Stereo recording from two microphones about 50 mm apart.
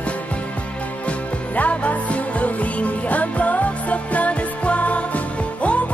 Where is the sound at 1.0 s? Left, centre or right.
Left.